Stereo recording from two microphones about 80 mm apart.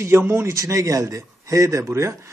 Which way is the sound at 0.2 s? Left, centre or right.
Right.